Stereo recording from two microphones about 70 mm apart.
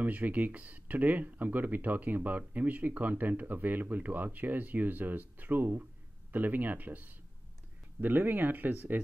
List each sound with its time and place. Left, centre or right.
0.0 s speech: right